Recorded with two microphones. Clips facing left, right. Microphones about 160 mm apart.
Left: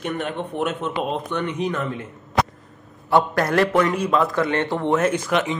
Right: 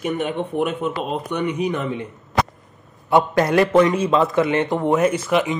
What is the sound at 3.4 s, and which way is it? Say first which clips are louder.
Speech: right 4 dB; centre (ahead or behind).